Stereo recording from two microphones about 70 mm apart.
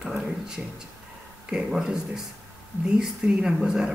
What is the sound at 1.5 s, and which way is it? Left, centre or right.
Speech, centre.